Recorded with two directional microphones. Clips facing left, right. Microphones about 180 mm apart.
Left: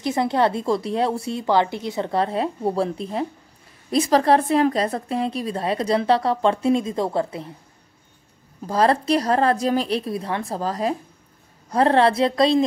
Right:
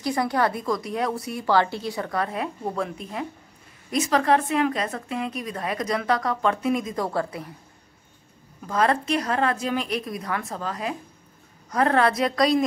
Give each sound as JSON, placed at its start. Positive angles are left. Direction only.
{"t": 0.0, "sound": "a woman's voice", "side_deg": 25}
{"t": 8.6, "sound": "a woman's voice", "side_deg": 35}